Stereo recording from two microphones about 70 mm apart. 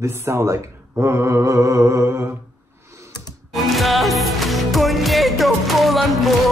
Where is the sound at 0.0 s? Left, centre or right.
Right.